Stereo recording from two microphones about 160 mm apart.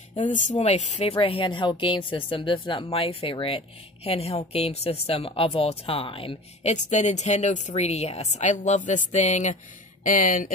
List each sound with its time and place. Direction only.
0.6 s a woman's voice: 45° left (ahead or behind)
6.7 s speech: 45° left (ahead or behind)